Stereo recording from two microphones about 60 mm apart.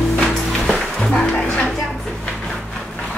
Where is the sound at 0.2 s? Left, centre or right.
Centre.